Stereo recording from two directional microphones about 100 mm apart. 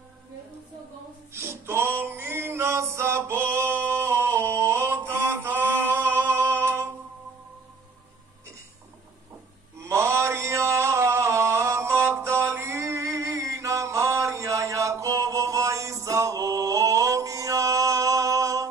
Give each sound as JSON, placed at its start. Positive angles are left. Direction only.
{"t": 1.3, "sound": "music", "side_deg": -25}
{"t": 9.8, "sound": "mantra", "side_deg": -25}